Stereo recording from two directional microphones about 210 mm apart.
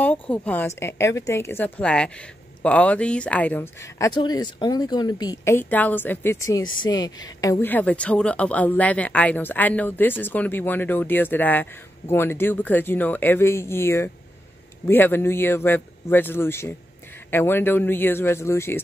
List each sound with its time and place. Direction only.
0.0 s speech: 10° left (ahead or behind)